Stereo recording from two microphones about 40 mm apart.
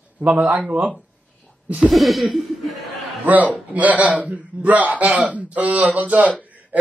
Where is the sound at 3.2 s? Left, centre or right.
Right.